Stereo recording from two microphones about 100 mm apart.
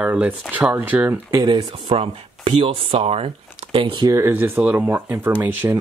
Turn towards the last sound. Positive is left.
turn(degrees=-20)  # may be behind; listen again after turning